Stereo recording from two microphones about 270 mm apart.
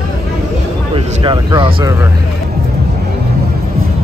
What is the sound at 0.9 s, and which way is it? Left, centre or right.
Speech, centre.